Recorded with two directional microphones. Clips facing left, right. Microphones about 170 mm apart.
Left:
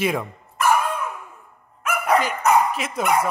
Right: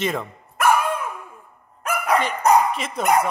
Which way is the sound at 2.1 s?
Centre (ahead or behind).